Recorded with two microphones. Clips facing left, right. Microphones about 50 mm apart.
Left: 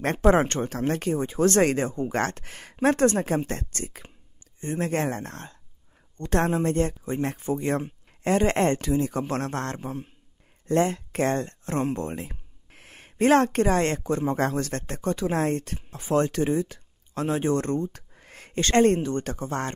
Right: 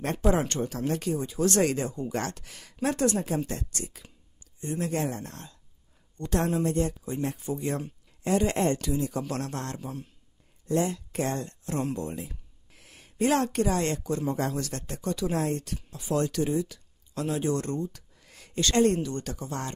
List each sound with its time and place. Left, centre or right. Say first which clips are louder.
0.0 s speech: left 5 dB; left
10.7 s speech: left 4 dB; left